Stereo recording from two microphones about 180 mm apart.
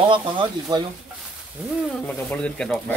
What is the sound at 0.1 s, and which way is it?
Speech, 25° right (ahead or behind).